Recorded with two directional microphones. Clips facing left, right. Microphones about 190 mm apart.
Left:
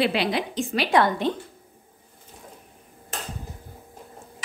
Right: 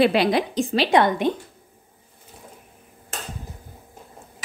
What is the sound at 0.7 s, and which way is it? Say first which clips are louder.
Speech: right 2 dB; 25° right (ahead or behind).